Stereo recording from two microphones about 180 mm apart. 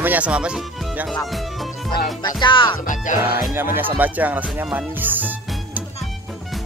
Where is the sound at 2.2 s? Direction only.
25° left (ahead or behind).